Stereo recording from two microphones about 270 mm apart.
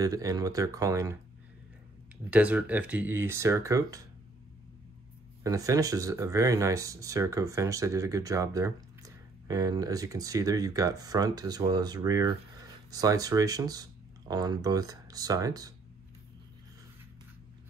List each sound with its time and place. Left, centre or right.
0.0 s speech: centre
2.3 s speech: centre
5.4 s speech: centre